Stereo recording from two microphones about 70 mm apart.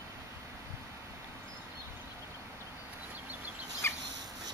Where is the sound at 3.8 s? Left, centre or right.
Left.